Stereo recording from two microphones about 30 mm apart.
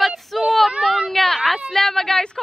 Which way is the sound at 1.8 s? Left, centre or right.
Centre.